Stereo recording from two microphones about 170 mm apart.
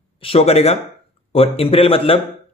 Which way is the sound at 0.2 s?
35° left (ahead or behind).